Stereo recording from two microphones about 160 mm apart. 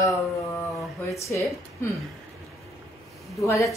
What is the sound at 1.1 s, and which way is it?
Speech, 20° left (ahead or behind).